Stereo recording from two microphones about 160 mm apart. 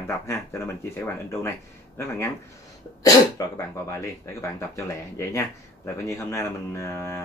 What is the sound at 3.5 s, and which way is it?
A man's voice, 20° left (ahead or behind).